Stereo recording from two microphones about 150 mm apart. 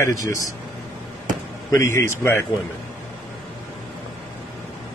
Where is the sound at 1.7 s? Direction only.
15° left (ahead or behind).